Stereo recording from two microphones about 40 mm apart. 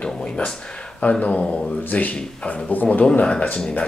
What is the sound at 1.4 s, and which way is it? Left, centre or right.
Speech, left.